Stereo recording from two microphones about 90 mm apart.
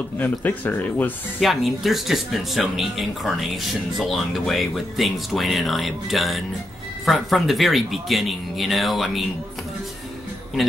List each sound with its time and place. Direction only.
0.2 s speech: 20° left (ahead or behind)
1.4 s speech: centre (ahead or behind)